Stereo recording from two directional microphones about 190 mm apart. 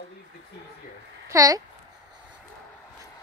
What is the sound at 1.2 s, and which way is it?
Speech, 15° right (ahead or behind).